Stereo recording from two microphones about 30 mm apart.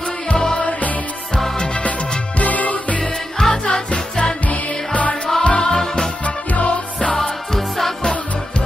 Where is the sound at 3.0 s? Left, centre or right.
Left.